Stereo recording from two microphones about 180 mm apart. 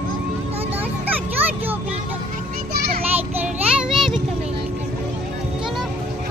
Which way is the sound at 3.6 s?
5° right (ahead or behind).